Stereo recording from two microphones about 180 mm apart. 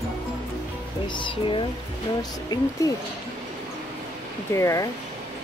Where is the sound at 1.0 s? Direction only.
25° left (ahead or behind).